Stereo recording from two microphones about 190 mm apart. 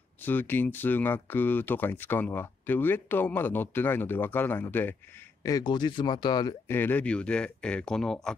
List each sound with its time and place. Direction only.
0.2 s speech: 10° left (ahead or behind)
5.4 s speech: 20° left (ahead or behind); by 8.4 s 5° left (ahead or behind)